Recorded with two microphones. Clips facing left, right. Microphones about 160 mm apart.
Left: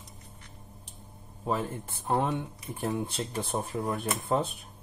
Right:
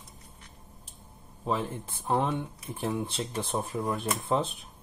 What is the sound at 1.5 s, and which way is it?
Speech, 45° left (ahead or behind).